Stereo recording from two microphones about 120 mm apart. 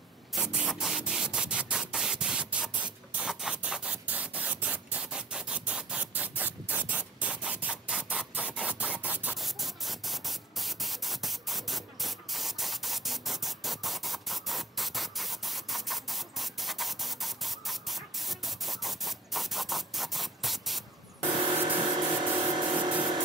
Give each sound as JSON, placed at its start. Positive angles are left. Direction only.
{"t": 0.3, "sound": "spray", "side_deg": -5}
{"t": 9.4, "sound": "spray", "side_deg": 0}
{"t": 21.9, "sound": "a sound", "side_deg": -40}